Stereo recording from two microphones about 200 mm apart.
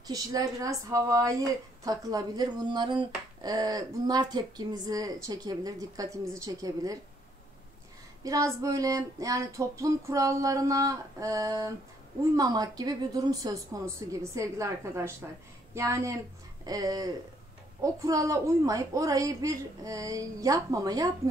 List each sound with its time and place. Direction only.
0.0 s speech: 20° right (ahead or behind)
8.2 s speech: 15° right (ahead or behind)